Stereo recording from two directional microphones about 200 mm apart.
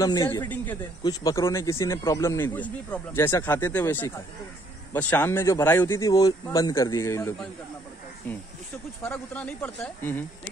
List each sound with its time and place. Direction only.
0.0 s speech: 20° left (ahead or behind)
9.0 s speech: 10° left (ahead or behind)